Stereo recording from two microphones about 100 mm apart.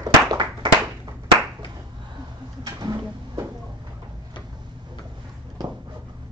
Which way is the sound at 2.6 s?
40° right (ahead or behind).